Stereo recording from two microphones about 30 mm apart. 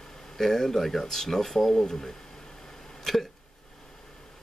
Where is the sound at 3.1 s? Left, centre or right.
Centre.